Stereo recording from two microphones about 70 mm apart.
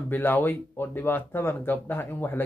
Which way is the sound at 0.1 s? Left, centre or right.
Left.